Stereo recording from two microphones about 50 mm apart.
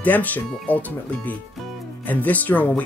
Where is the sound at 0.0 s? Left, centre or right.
Left.